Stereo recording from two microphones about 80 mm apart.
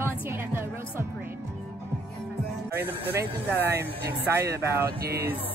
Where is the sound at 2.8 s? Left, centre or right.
Right.